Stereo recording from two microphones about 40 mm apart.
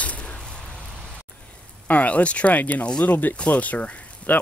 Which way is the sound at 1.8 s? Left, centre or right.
Left.